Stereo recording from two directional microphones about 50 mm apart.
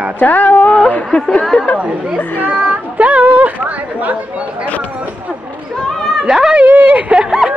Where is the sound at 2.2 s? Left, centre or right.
Left.